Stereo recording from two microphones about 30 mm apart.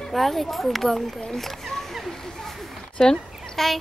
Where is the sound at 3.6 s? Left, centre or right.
Centre.